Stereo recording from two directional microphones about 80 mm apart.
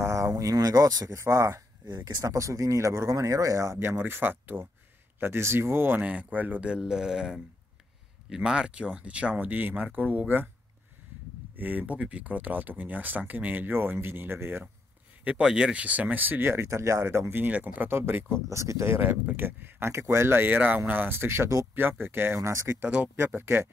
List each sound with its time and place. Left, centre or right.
0.0 s speech: right
1.9 s speech: right
2.3 s speech: right
11.5 s speech: right
15.2 s speech: centre; by 18.9 s right
18.9 s speech: right
21.7 s speech: right
22.5 s speech: right
22.8 s speech: centre
23.1 s speech: right